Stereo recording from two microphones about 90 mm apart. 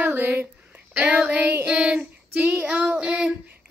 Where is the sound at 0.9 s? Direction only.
15° right (ahead or behind).